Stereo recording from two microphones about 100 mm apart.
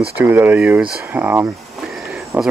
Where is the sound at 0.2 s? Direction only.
20° right (ahead or behind).